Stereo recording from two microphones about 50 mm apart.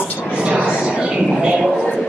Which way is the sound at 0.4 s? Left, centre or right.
Right.